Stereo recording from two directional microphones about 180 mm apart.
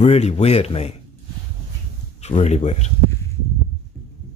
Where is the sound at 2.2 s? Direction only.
35° left (ahead or behind).